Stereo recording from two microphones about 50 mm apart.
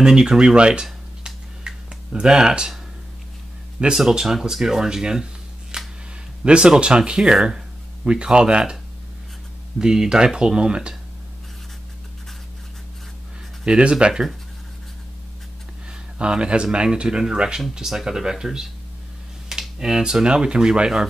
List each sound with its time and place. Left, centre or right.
0.0 s speech: centre
1.2 s a sound: centre
3.9 s speech: centre
5.7 s a sound: centre
6.4 s speech: right
9.8 s speech: centre
13.7 s speech: centre
16.2 s speech: right